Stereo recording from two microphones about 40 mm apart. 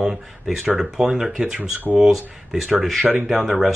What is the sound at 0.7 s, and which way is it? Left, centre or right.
Speech, centre.